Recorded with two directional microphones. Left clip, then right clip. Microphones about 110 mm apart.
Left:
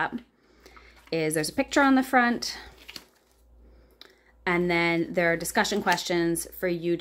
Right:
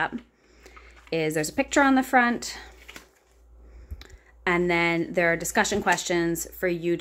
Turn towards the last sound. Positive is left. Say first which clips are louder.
# right 2 dB
turn(degrees=-5)  # may be behind; listen again after turning